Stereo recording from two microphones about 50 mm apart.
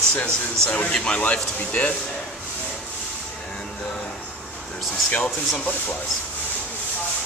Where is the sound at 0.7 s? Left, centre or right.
Left.